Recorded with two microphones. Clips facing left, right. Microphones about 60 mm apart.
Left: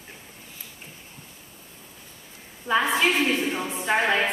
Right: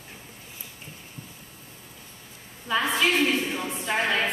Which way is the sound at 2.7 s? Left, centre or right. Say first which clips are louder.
Left 2 dB; left.